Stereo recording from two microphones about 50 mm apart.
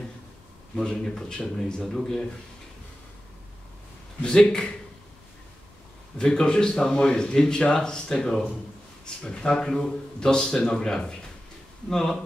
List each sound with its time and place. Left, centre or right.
0.7 s speech: centre
4.2 s a man's voice: centre
6.1 s speech: centre